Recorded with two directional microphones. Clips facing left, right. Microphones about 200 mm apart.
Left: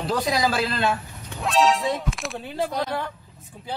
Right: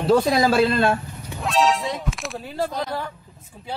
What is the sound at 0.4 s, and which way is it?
Speech, 25° right (ahead or behind).